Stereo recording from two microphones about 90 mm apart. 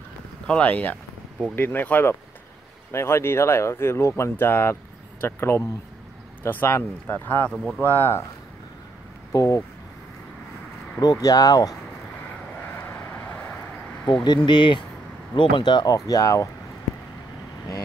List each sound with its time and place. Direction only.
0.5 s speech: 15° left (ahead or behind)
7.5 s speech: 5° right (ahead or behind)
9.3 s speech: 40° left (ahead or behind)
11.0 s speech: 45° left (ahead or behind)
12.8 s vehicle: 15° left (ahead or behind)
14.0 s speech: 55° left (ahead or behind); by 16.4 s 40° left (ahead or behind)